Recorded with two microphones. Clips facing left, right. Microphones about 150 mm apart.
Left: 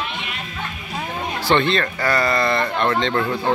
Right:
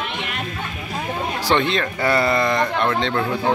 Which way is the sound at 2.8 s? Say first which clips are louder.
Left 1 dB; centre (ahead or behind).